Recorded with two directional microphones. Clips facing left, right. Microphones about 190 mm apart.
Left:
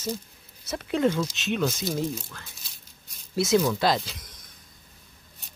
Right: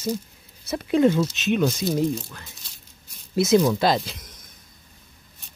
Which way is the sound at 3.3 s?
20° right (ahead or behind).